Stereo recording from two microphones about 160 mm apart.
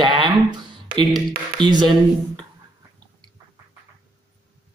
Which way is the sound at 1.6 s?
25° right (ahead or behind).